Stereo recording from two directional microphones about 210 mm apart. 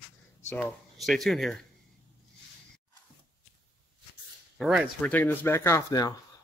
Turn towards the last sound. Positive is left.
turn(degrees=15)  # may be behind; listen again after turning